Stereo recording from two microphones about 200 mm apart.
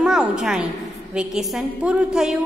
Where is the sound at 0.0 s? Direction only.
5° right (ahead or behind).